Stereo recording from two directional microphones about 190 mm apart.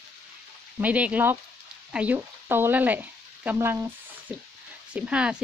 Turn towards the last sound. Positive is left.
turn(degrees=-5)  # may be behind; listen again after turning